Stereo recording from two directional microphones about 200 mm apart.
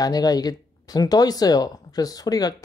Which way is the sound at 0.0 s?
20° left (ahead or behind).